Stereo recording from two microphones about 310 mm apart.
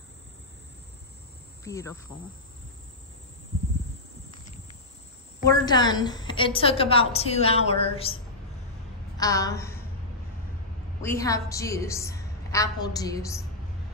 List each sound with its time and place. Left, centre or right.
1.6 s speech: centre
5.5 s a woman's voice: centre
9.2 s a woman's voice: centre
11.0 s a woman's voice: centre